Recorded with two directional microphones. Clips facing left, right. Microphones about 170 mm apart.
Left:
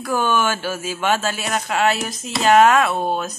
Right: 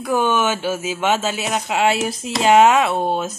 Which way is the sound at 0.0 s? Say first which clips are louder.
Right 2 dB; 20° right (ahead or behind).